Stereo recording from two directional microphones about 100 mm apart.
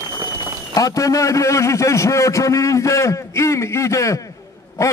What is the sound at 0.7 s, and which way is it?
A man's voice, 35° left (ahead or behind).